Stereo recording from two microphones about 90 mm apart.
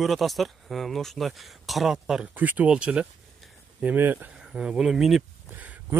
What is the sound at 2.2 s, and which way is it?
Speech, 20° right (ahead or behind).